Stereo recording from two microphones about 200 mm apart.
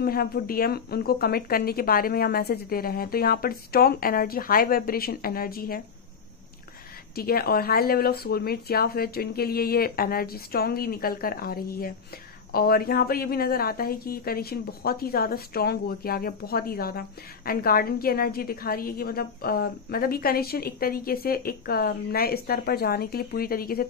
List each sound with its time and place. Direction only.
0.0 s a woman's voice: 50° left (ahead or behind)
7.2 s a woman's voice: 50° left (ahead or behind)